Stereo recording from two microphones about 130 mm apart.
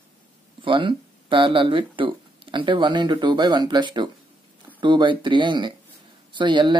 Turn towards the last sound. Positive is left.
turn(degrees=-35)  # may be behind; listen again after turning